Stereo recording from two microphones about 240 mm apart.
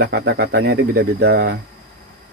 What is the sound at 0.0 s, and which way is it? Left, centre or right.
Speech, right.